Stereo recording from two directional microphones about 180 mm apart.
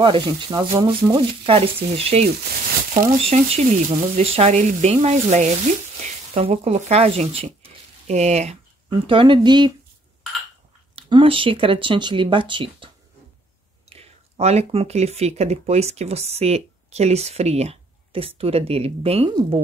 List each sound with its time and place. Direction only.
0.0 s speech: 30° right (ahead or behind)
11.0 s speech: 30° right (ahead or behind)